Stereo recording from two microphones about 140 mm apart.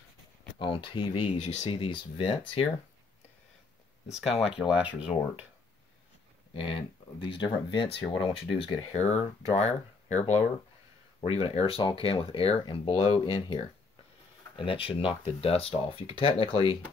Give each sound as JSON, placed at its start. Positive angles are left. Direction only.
{"t": 0.6, "sound": "speech", "side_deg": 40}
{"t": 1.4, "sound": "speech", "side_deg": 55}
{"t": 4.1, "sound": "speech", "side_deg": -5}
{"t": 6.5, "sound": "speech", "side_deg": 40}
{"t": 14.6, "sound": "speech", "side_deg": 40}